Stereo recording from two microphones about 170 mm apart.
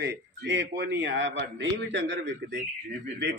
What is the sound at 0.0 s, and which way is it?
A man's voice, 85° right.